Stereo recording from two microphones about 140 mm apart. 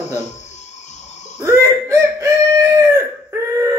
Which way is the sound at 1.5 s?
15° right (ahead or behind).